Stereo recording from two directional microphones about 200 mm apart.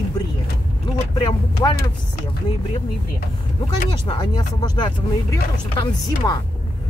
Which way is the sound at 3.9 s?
20° left (ahead or behind).